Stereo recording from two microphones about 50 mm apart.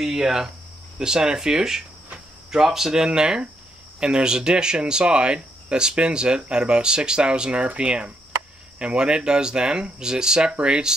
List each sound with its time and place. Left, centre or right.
0.0 s speech: centre